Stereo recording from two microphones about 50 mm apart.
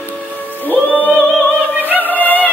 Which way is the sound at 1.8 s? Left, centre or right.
Right.